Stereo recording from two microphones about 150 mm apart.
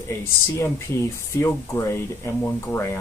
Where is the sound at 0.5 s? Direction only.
15° left (ahead or behind).